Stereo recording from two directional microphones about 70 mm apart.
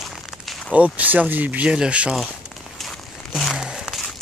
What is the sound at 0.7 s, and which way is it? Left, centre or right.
Speech, right.